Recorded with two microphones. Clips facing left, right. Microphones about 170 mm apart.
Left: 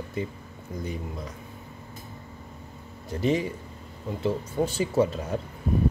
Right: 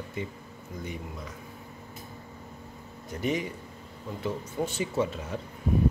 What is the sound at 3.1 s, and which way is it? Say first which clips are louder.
A man's voice: left 5 dB; 30° left (ahead or behind).